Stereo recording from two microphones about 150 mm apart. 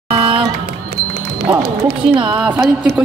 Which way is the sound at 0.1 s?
35° right (ahead or behind).